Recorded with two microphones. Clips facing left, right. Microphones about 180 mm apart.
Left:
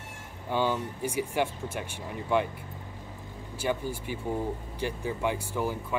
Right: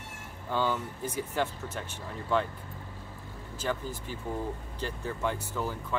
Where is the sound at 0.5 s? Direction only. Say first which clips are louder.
Left 2 dB; 15° left (ahead or behind).